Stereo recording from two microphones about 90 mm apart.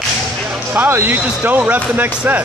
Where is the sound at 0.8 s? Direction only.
25° right (ahead or behind).